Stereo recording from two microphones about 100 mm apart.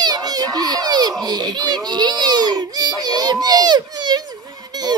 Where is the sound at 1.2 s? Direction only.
45° right (ahead or behind).